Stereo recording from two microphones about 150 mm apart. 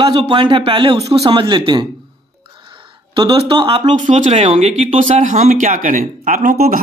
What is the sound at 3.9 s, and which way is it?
Speech, 55° right (ahead or behind).